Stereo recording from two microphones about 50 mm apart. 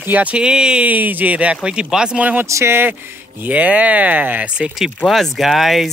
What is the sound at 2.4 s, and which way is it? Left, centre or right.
Speech, right.